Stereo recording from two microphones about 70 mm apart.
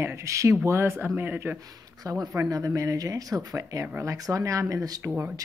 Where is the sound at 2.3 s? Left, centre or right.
Right.